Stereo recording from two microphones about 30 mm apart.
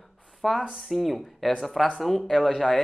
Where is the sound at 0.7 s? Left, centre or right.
Centre.